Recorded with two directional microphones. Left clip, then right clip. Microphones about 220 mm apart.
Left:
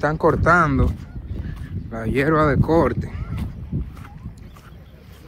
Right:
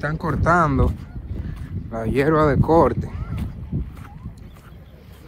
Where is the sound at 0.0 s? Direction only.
5° left (ahead or behind).